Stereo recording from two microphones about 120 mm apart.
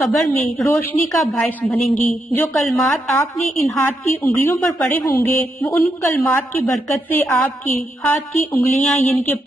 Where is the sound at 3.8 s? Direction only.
15° left (ahead or behind).